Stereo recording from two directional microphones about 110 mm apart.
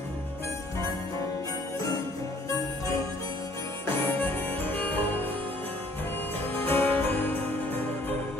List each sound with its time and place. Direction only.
3.8 s music: 15° left (ahead or behind)
6.5 s music: 20° left (ahead or behind)